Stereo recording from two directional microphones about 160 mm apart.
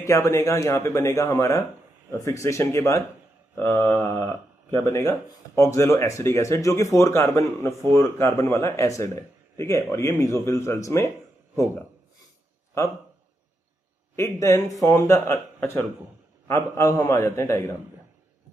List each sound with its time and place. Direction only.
0.0 s speech: 20° left (ahead or behind)
3.7 s a sound: 25° right (ahead or behind)
4.7 s speech: 20° left (ahead or behind)
14.1 s speech: 20° left (ahead or behind)